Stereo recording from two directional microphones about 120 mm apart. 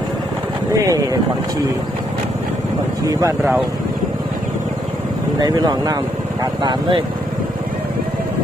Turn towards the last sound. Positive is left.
turn(degrees=-40)  # may be behind; listen again after turning